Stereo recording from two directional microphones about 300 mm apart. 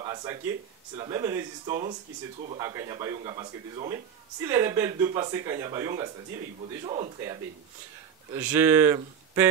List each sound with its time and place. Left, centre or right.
0.0 s a sound: centre
0.9 s speech: centre
6.9 s speech: centre
8.3 s speech: centre